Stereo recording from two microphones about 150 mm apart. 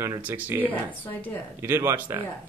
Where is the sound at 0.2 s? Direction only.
15° right (ahead or behind).